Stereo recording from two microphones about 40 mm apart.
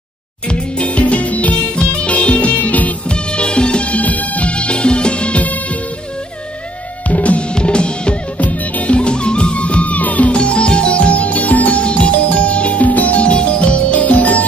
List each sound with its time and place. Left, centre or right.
0.5 s music: left
3.1 s music: left
7.1 s music: left
7.5 s drum: left
8.4 s music: left
8.9 s music: left
10.3 s music: left